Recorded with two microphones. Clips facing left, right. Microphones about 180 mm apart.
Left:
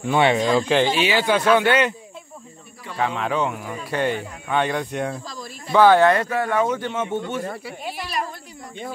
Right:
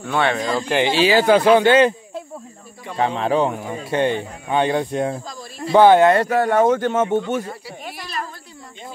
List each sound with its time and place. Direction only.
0.0 s speech: 15° left (ahead or behind)
0.4 s speech: 5° right (ahead or behind)
0.9 s a man's voice: 35° right (ahead or behind)
3.0 s speech: 30° right (ahead or behind)
6.2 s speech: 40° right (ahead or behind)